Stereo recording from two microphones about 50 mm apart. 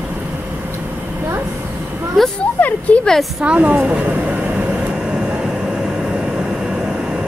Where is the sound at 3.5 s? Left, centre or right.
Right.